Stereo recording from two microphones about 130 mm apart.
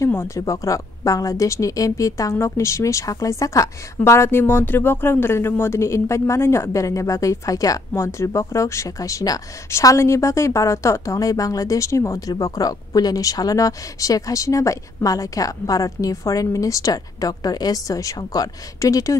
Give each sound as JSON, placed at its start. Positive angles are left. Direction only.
{"t": 0.0, "sound": "a woman's voice", "side_deg": 20}